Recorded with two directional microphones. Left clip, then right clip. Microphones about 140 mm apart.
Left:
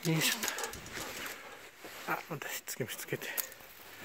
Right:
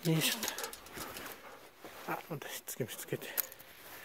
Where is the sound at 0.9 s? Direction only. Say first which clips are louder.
Left 4 dB; 30° right (ahead or behind).